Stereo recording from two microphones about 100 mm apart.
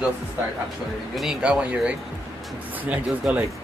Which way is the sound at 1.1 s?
5° right (ahead or behind).